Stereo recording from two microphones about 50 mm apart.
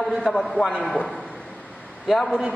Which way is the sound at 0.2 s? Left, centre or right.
Centre.